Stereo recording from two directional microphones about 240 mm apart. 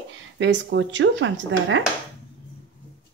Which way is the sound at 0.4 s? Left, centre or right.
Right.